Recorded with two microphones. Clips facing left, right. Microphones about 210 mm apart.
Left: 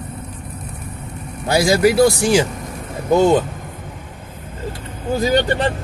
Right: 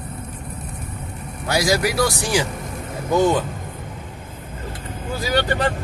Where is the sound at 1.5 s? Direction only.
25° left (ahead or behind).